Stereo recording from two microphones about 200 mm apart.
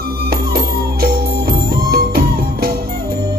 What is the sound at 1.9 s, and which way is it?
Music, 50° right (ahead or behind).